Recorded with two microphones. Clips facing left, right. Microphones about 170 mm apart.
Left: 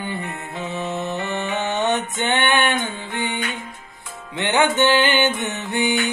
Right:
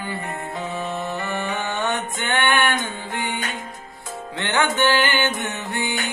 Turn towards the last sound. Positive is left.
turn(degrees=20)  # may be behind; listen again after turning